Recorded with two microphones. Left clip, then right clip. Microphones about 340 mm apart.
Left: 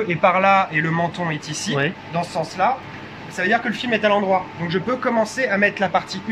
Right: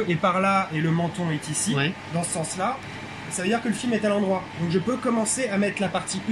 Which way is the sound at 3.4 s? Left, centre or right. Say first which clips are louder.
Left 6 dB; left.